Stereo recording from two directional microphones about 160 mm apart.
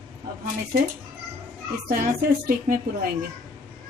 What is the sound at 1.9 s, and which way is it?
A woman's voice, 60° right (ahead or behind).